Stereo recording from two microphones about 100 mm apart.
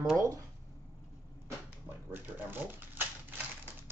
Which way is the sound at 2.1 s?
20° right (ahead or behind).